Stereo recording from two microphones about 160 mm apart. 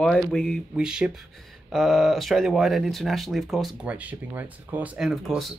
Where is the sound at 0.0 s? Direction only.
5° left (ahead or behind).